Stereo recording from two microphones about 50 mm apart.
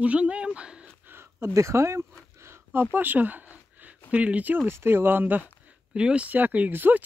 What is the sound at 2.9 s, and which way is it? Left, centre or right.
Speech, right.